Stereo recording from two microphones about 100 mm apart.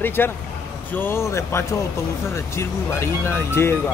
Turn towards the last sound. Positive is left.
turn(degrees=25)  # may be behind; listen again after turning